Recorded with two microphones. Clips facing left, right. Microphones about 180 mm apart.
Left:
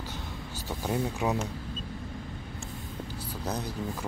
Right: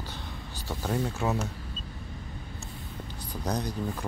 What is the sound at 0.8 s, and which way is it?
Speech, 15° left (ahead or behind).